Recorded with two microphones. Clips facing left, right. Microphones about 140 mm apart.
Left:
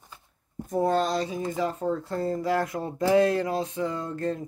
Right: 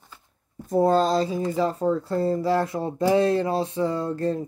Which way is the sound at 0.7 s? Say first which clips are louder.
Right 5 dB; 35° right (ahead or behind).